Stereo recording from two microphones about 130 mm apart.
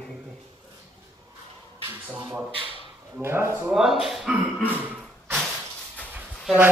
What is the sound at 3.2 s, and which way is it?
Speech, 20° right (ahead or behind).